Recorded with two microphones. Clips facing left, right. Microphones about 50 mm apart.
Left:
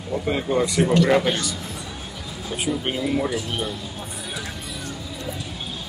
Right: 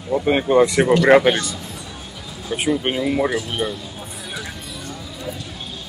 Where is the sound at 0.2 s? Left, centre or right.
Right.